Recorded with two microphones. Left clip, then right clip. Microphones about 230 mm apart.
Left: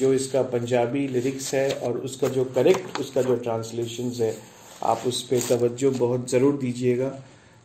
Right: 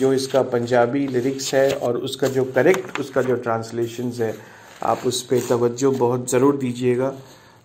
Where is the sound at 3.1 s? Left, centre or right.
Right.